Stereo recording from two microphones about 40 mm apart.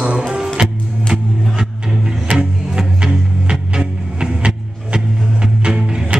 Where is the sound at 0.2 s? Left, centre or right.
Centre.